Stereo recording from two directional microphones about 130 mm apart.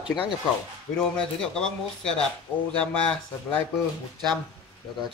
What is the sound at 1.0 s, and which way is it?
Speech, 5° left (ahead or behind).